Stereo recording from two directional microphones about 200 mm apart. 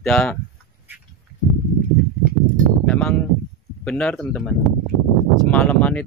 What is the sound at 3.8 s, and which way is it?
Speech, 5° left (ahead or behind).